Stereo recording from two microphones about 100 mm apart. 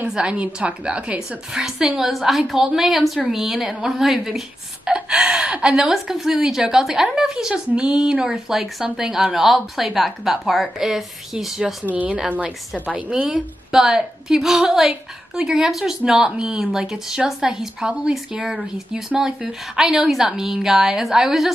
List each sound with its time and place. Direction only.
0.0 s a woman's voice: 10° right (ahead or behind)
11.9 s a woman's voice: 15° right (ahead or behind)